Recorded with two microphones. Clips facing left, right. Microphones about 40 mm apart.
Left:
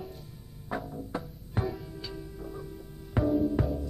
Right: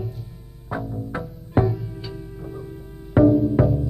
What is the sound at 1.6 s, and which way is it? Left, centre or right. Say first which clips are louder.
Music: right 9 dB; centre.